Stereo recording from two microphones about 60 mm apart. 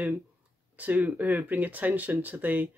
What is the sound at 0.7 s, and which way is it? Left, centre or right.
Speech, right.